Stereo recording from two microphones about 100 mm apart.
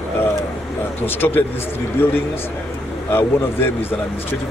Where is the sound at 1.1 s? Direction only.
20° left (ahead or behind).